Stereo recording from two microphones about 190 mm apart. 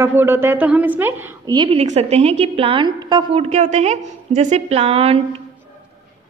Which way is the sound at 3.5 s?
35° right (ahead or behind).